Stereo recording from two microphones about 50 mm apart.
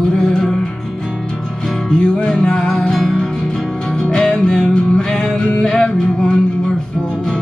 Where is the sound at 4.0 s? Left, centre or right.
Centre.